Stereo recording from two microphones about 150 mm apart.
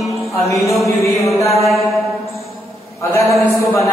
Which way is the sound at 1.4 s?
20° left (ahead or behind).